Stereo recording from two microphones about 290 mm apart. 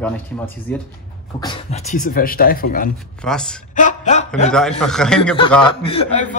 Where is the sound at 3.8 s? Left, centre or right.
Left.